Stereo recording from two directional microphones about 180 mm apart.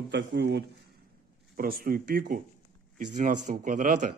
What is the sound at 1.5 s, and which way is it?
Speech, 55° right (ahead or behind).